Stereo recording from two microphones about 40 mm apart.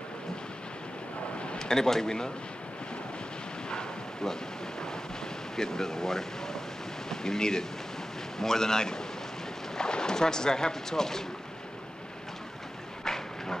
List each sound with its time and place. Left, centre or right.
1.6 s speech: centre
3.7 s bow-wow: centre
5.6 s speech: centre
13.0 s a sound: centre